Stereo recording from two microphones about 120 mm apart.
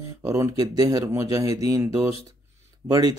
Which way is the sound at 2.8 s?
30° right (ahead or behind).